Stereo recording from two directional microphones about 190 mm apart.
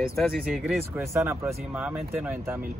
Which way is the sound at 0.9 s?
15° right (ahead or behind).